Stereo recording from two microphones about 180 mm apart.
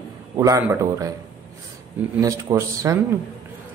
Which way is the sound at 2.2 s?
15° right (ahead or behind).